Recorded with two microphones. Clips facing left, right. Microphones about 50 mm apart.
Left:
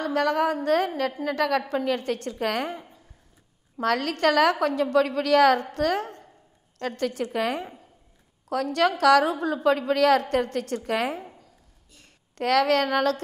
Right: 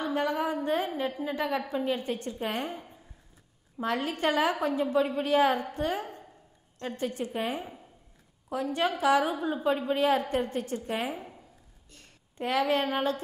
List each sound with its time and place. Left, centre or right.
0.0 s a woman's voice: left
3.8 s a woman's voice: left
12.4 s a woman's voice: left